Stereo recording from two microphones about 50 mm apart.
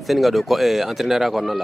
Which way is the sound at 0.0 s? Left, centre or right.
Centre.